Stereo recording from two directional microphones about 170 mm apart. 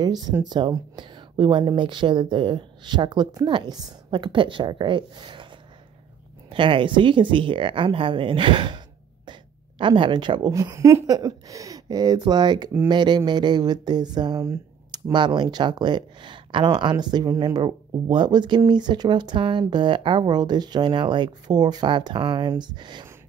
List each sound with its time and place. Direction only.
0.0 s speech: 25° right (ahead or behind)
6.5 s speech: 30° right (ahead or behind)